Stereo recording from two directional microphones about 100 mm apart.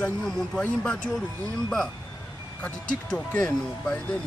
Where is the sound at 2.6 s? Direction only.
10° left (ahead or behind).